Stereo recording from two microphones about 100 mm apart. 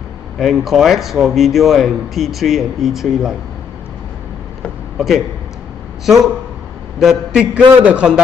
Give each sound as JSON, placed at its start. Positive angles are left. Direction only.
{"t": 0.4, "sound": "speech", "side_deg": -5}
{"t": 4.9, "sound": "a man's voice", "side_deg": -5}
{"t": 7.0, "sound": "a man's voice", "side_deg": -5}